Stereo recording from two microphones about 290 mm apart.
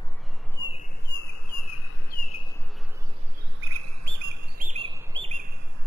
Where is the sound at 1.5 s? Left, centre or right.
Left.